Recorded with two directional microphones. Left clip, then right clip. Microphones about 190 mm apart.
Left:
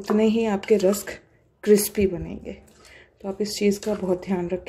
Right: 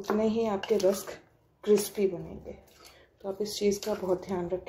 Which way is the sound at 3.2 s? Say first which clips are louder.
Left 5 dB; 25° left (ahead or behind).